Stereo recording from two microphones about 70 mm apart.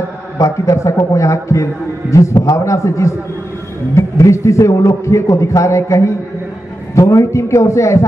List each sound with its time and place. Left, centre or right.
0.4 s a man's voice: left